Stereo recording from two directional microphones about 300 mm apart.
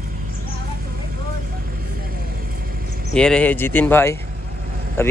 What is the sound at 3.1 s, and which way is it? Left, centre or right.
Speech, centre.